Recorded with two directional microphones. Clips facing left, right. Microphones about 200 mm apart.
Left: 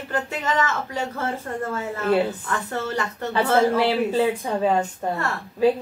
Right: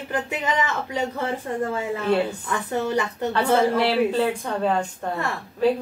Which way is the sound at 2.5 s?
15° right (ahead or behind).